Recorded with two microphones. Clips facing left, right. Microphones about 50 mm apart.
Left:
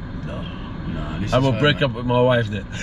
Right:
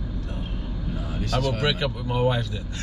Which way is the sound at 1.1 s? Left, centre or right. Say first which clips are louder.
Left 7 dB; left.